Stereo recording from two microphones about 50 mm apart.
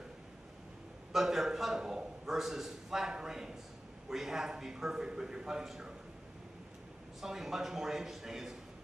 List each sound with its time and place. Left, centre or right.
1.1 s a man's voice: centre
7.2 s a man's voice: centre